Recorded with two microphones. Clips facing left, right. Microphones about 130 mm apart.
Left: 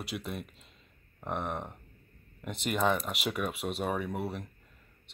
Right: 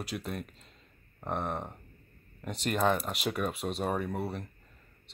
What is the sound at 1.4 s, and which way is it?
Speech, 35° right (ahead or behind).